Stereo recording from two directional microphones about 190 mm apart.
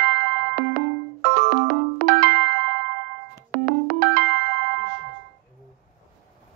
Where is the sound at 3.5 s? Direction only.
60° right (ahead or behind).